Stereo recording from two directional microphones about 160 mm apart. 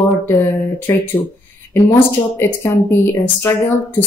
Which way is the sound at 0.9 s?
15° left (ahead or behind).